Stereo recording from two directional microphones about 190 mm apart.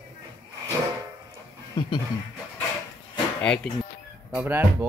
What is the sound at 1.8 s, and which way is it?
Speech, 25° left (ahead or behind).